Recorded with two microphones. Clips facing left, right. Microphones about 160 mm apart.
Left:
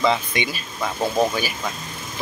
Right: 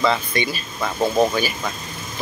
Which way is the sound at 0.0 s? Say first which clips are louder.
Right 1 dB; 15° left (ahead or behind).